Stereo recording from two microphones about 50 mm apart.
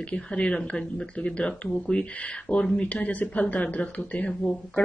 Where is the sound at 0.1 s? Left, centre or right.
Left.